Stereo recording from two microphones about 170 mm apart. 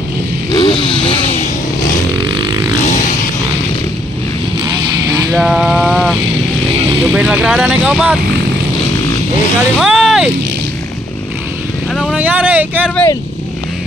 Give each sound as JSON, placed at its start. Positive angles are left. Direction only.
{"t": 0.5, "sound": "vehicle", "side_deg": 25}
{"t": 2.1, "sound": "vehicle", "side_deg": -25}
{"t": 5.3, "sound": "vehicle", "side_deg": 0}
{"t": 7.0, "sound": "speech", "side_deg": -5}
{"t": 9.8, "sound": "vehicle", "side_deg": 0}
{"t": 11.9, "sound": "vehicle", "side_deg": -5}
{"t": 12.9, "sound": "speech", "side_deg": 15}